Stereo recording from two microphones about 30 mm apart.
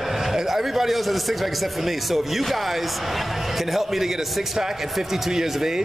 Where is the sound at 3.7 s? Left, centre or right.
Centre.